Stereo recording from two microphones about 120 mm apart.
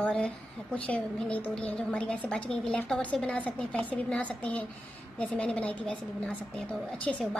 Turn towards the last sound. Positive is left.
turn(degrees=5)  # may be behind; listen again after turning